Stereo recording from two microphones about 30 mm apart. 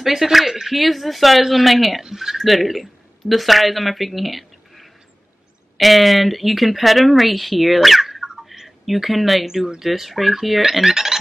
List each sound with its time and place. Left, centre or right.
0.0 s speech: centre
8.6 s speech: centre